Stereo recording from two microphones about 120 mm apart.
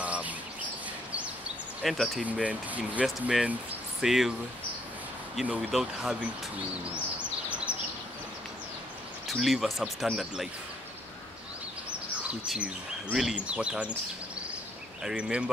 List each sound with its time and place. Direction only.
0.0 s bird: 10° right (ahead or behind)
1.8 s speech: centre (ahead or behind)
2.2 s speech: 10° right (ahead or behind)
5.3 s speech: centre (ahead or behind)
7.2 s bird vocalization: 10° right (ahead or behind)
9.3 s speech: centre (ahead or behind)
12.2 s speech: 10° right (ahead or behind)
15.0 s speech: 5° right (ahead or behind)